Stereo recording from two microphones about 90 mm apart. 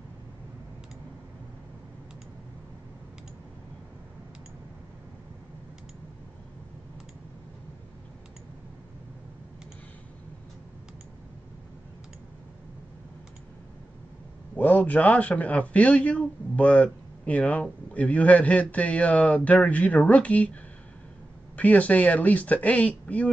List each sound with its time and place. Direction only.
14.6 s a man's voice: 20° left (ahead or behind)
21.5 s a man's voice: 15° left (ahead or behind)